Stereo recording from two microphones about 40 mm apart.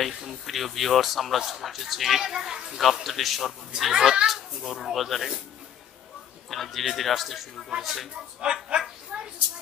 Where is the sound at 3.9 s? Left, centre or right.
Centre.